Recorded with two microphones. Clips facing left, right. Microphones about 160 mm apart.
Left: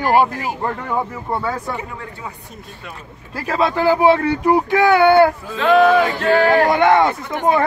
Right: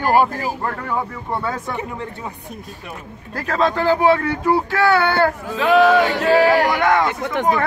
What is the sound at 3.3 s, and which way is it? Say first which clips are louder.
Speech: left 1 dB; 10° left (ahead or behind).